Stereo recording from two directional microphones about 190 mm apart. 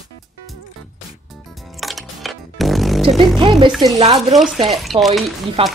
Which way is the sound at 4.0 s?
35° right (ahead or behind).